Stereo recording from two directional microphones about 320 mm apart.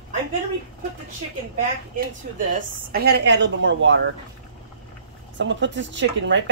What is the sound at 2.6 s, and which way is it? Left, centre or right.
Speech, right.